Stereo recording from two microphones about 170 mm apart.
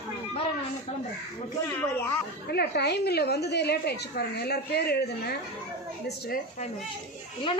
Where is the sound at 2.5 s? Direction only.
70° left (ahead or behind).